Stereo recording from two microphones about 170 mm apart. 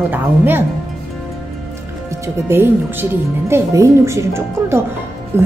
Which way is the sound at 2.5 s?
15° right (ahead or behind).